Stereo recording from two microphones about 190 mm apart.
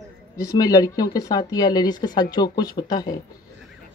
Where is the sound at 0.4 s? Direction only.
20° left (ahead or behind).